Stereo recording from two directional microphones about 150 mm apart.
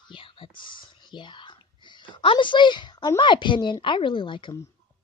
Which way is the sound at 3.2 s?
30° left (ahead or behind).